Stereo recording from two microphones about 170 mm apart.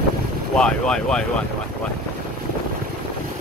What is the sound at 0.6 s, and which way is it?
Speech, 5° left (ahead or behind).